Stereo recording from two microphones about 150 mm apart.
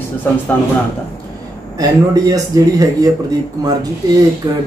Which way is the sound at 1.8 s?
25° right (ahead or behind).